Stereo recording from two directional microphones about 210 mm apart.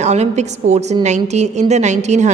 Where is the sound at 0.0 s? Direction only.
35° right (ahead or behind).